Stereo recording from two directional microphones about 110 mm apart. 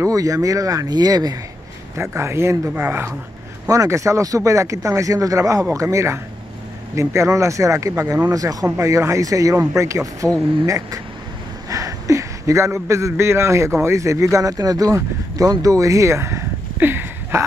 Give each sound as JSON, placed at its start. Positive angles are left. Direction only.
{"t": 0.0, "sound": "speech", "side_deg": -30}
{"t": 2.0, "sound": "speech", "side_deg": -25}
{"t": 3.6, "sound": "a man's voice", "side_deg": -30}